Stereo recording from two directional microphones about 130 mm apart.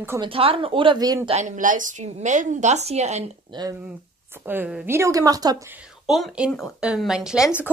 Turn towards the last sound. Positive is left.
turn(degrees=-5)  # may be behind; listen again after turning